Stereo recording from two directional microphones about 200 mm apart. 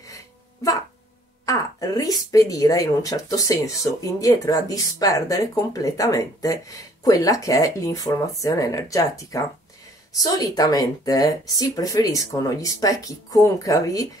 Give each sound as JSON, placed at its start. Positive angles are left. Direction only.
{"t": 0.0, "sound": "music", "side_deg": 15}
{"t": 1.4, "sound": "a woman's voice", "side_deg": 15}